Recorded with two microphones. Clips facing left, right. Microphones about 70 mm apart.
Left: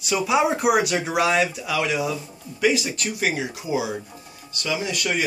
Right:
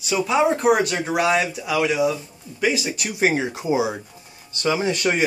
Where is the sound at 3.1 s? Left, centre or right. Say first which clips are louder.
Right 7 dB; right.